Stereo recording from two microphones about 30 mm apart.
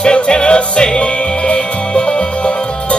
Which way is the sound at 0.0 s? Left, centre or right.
Left.